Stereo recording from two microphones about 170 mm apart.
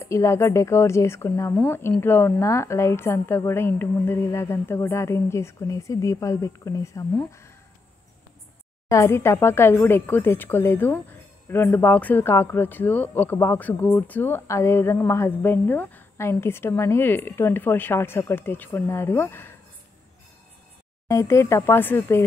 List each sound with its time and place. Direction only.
0.0 s a man's voice: 15° left (ahead or behind)
8.8 s a man's voice: 15° left (ahead or behind)
21.1 s a man's voice: 15° left (ahead or behind)